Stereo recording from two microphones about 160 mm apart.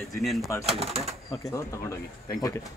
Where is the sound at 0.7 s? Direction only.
40° right (ahead or behind).